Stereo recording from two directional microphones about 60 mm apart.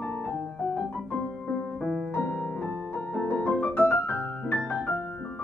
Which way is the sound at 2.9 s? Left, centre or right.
Left.